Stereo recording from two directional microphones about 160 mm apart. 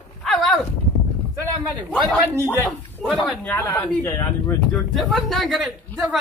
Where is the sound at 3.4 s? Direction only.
15° left (ahead or behind).